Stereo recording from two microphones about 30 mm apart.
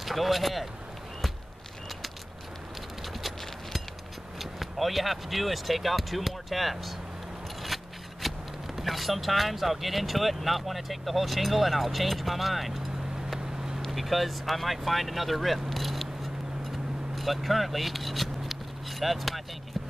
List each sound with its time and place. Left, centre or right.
0.0 s speech: centre
3.1 s a sound: centre
4.4 s speech: centre
7.6 s scissors: centre
8.7 s speech: centre
13.8 s speech: centre
15.7 s vehicle: centre
17.1 s speech: centre